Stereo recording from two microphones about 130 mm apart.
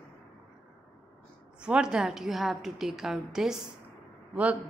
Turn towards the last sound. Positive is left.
turn(degrees=-10)  # may be behind; listen again after turning